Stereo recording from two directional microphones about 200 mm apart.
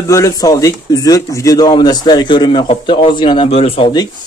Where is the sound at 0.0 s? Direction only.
15° left (ahead or behind).